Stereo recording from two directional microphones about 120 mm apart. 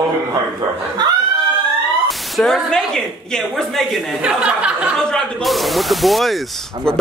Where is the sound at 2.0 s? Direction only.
5° left (ahead or behind).